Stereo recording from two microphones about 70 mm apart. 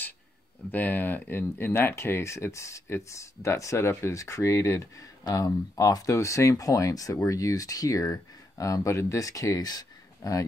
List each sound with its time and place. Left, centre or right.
0.7 s speech: left
4.9 s speech: left
6.1 s speech: left